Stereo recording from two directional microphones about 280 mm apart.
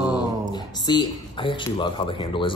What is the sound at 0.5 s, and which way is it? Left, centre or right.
Speech, centre.